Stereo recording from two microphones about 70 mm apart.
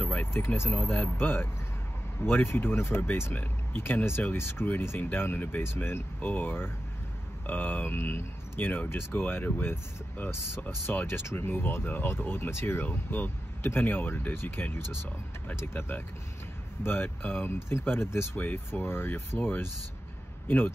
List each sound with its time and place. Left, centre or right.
0.0 s speech: left